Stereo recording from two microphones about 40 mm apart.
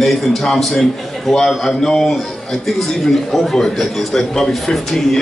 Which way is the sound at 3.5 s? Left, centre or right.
Centre.